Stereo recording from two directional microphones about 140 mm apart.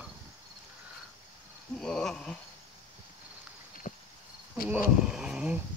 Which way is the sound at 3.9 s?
65° left (ahead or behind).